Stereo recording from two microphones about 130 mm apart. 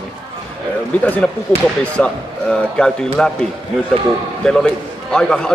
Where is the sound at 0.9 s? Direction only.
10° left (ahead or behind).